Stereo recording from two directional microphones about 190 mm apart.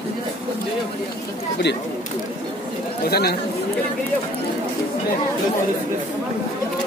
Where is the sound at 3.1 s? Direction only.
55° left (ahead or behind).